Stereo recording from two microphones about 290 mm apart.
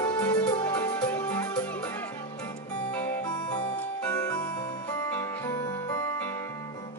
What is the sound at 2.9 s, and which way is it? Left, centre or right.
Music, centre.